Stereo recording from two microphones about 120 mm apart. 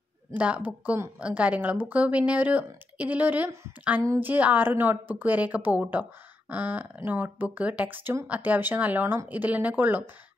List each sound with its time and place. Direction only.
0.3 s a woman's voice: 15° right (ahead or behind)